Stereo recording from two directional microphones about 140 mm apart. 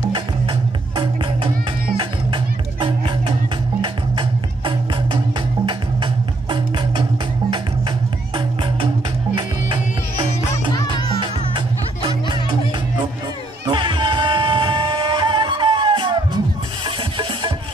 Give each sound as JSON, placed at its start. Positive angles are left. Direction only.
{"t": 0.1, "sound": "music", "side_deg": -35}
{"t": 8.4, "sound": "music", "side_deg": -40}
{"t": 13.7, "sound": "music", "side_deg": -35}